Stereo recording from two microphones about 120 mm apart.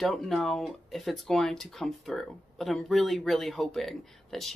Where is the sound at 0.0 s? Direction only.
Centre (ahead or behind).